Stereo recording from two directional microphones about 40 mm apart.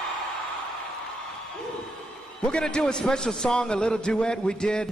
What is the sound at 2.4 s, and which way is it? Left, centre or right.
A man's voice, left.